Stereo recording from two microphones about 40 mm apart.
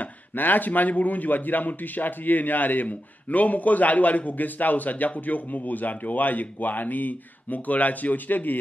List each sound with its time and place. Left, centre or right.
0.0 s a man's voice: left